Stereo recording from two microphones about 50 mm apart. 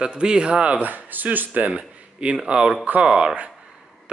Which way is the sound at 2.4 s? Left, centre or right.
Centre.